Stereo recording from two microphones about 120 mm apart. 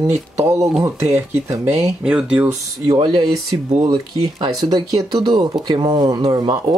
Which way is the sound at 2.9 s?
40° right (ahead or behind).